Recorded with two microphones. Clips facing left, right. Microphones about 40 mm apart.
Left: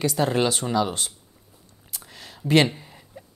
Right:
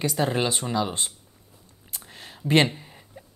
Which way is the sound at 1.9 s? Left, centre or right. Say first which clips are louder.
Even; centre.